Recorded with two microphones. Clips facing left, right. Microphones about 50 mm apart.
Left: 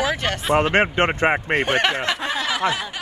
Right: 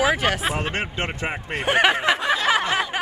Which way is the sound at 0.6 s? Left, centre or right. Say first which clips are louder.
Left 9 dB; left.